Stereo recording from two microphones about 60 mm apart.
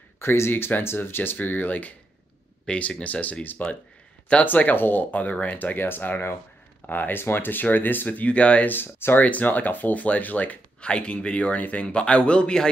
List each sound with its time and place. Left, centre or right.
0.2 s speech: left
2.6 s speech: centre
8.7 s speech: left
9.2 s speech: left